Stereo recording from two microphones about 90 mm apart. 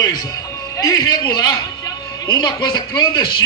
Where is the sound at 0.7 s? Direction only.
45° left (ahead or behind).